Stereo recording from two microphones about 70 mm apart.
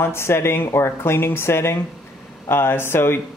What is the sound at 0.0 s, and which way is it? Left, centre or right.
Speech, left.